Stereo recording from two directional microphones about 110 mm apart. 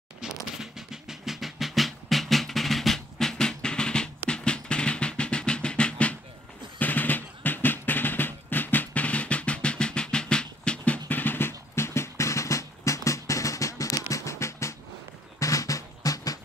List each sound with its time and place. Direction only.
0.6 s music: 5° right (ahead or behind)
6.8 s drum: 15° left (ahead or behind); by 16.3 s 30° left (ahead or behind)